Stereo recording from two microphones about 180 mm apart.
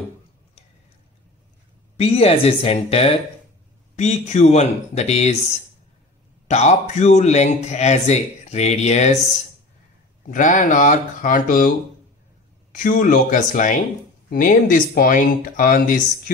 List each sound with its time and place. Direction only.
2.0 s speech: 35° left (ahead or behind)
6.4 s speech: 40° left (ahead or behind)
10.3 s speech: 45° left (ahead or behind)
12.7 s speech: 50° left (ahead or behind)